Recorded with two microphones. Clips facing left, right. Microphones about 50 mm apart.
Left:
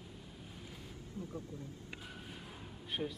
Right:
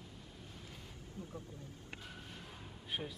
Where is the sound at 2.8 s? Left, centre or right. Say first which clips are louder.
Left 3 dB; centre.